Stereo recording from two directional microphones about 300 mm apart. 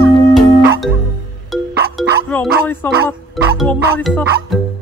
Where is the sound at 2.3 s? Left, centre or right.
Centre.